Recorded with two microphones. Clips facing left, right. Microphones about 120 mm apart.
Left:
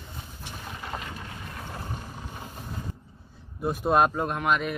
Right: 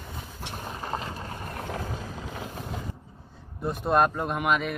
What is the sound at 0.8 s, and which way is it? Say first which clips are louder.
Boat: right 3 dB; 35° right (ahead or behind).